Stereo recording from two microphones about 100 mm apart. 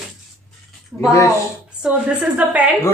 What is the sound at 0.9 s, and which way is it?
Speech, centre (ahead or behind).